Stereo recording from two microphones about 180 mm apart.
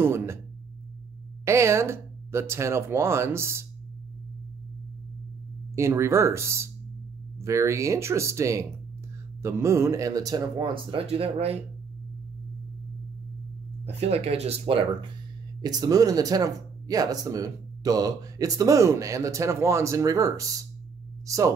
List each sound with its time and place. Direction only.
0.0 s speech: 15° right (ahead or behind)
1.4 s speech: 15° right (ahead or behind)
5.8 s speech: 15° right (ahead or behind); by 11.6 s 35° right (ahead or behind)
13.8 s speech: 35° right (ahead or behind); by 20.4 s 20° right (ahead or behind)